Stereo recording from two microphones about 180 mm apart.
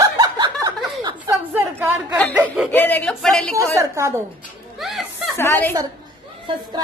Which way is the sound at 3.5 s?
15° right (ahead or behind).